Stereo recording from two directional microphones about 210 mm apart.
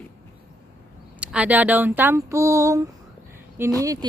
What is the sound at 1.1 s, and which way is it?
Speech, 5° right (ahead or behind).